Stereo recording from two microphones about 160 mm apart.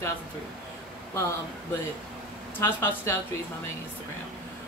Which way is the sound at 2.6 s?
15° left (ahead or behind).